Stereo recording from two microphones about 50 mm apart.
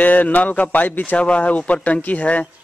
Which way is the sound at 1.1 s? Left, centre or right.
Left.